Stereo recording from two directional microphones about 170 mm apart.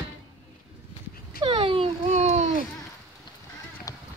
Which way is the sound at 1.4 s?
30° right (ahead or behind).